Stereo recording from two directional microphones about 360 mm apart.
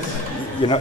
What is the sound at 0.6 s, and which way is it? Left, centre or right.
Speech, centre.